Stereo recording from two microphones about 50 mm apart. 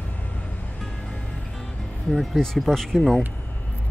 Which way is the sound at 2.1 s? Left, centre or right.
Centre.